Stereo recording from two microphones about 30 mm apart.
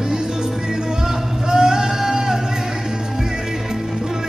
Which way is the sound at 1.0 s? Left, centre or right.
Centre.